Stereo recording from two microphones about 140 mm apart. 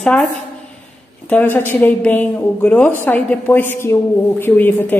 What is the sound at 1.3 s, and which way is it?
A woman's voice, 15° left (ahead or behind).